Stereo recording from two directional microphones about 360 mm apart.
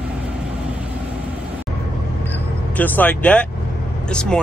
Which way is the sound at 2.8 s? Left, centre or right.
Centre.